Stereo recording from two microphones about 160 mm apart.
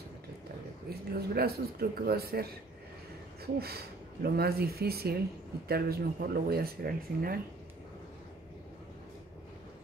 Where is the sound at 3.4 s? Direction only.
80° right.